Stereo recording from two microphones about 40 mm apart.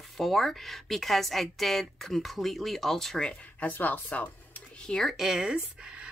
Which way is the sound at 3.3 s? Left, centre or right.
Left.